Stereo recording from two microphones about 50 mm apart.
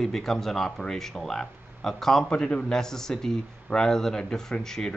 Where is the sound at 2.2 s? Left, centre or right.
Centre.